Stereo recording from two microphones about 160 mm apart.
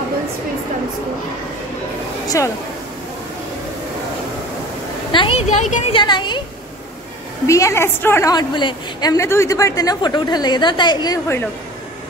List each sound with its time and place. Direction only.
2.2 s speech: 20° left (ahead or behind)
5.1 s a woman's voice: 30° left (ahead or behind)
5.5 s speech: 50° left (ahead or behind)
5.9 s a woman's voice: 30° left (ahead or behind)
7.4 s a woman's voice: 20° left (ahead or behind)